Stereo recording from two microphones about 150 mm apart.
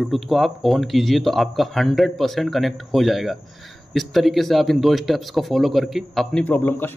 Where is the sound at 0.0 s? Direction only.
Centre (ahead or behind).